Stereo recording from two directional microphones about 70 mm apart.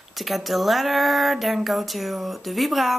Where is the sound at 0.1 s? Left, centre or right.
Centre.